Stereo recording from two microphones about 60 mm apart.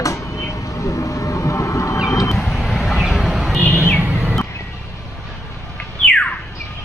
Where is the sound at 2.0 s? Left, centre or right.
Left.